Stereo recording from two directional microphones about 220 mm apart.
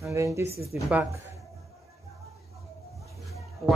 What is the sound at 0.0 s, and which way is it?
Speech, 15° right (ahead or behind).